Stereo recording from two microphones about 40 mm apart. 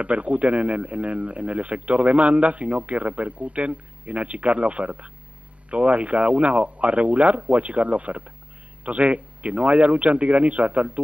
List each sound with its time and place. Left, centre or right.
0.0 s speech: right